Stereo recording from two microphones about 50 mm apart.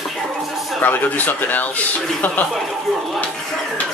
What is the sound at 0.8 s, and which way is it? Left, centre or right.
Speech, left.